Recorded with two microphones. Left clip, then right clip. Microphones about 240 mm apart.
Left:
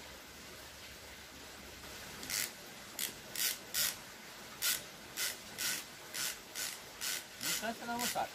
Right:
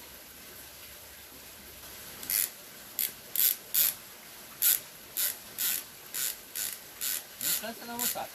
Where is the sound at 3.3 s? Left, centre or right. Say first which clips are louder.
Right 3 dB; centre.